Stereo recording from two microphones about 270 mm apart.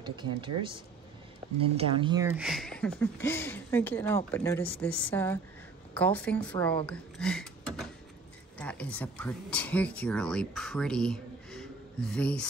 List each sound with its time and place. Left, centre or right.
0.0 s speech: centre
1.6 s speech: centre